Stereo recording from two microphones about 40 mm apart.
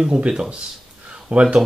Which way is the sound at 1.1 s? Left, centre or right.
Right.